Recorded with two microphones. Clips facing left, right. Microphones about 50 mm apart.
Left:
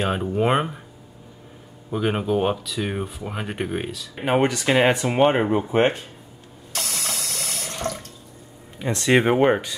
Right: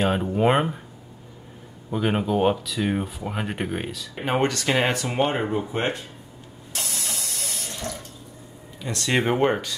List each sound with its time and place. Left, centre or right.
0.0 s speech: centre
1.9 s speech: centre
4.3 s speech: centre; by 5.9 s left
6.7 s water: left
8.7 s speech: left